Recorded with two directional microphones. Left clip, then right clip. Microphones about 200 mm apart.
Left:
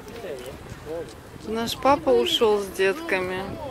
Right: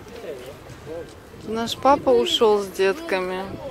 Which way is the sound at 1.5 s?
10° right (ahead or behind).